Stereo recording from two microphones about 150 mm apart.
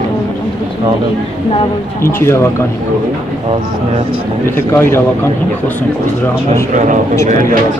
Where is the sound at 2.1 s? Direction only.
20° left (ahead or behind).